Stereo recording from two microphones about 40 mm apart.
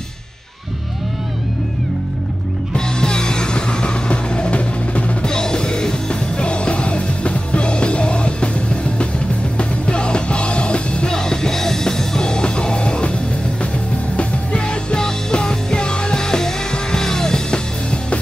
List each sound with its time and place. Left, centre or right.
2.7 s music: centre
5.2 s music: centre
11.1 s music: centre
14.1 s music: left